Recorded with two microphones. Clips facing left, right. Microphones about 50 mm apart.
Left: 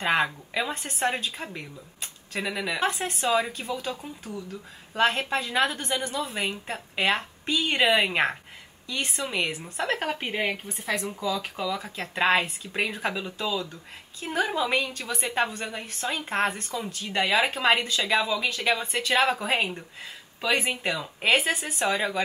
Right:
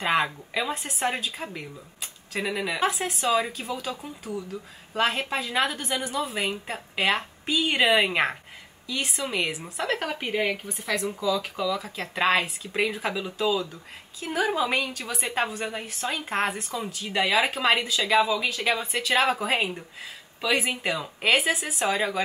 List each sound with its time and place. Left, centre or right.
0.0 s a woman's voice: centre